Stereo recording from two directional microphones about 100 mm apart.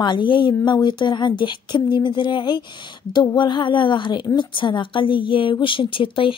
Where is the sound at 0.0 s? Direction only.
50° left (ahead or behind).